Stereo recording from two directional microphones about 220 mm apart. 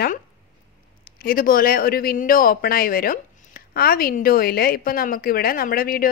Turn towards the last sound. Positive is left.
turn(degrees=40)  # may be behind; listen again after turning